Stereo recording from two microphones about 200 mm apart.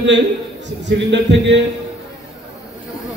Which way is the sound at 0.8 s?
60° right (ahead or behind).